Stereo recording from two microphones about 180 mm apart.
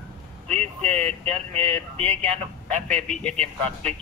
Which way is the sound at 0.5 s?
10° left (ahead or behind).